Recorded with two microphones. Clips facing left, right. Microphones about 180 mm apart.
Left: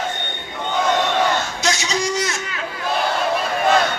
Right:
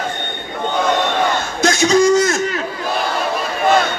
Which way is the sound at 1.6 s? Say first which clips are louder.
Right 9 dB; 50° right (ahead or behind).